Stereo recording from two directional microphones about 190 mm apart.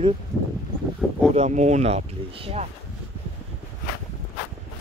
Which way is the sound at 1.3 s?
35° right (ahead or behind).